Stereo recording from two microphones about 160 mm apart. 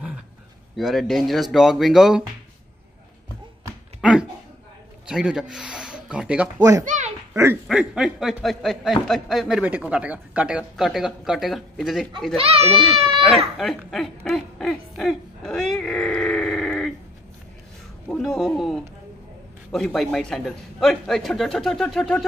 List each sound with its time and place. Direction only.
0.7 s speech: centre (ahead or behind)
4.0 s a sound: 5° right (ahead or behind)
5.0 s speech: 5° right (ahead or behind)
6.8 s speech: 50° right (ahead or behind)
7.6 s speech: 5° right (ahead or behind)
12.4 s speech: 40° right (ahead or behind)
13.4 s speech: centre (ahead or behind)
13.8 s a sound: centre (ahead or behind)
18.0 s speech: 5° left (ahead or behind)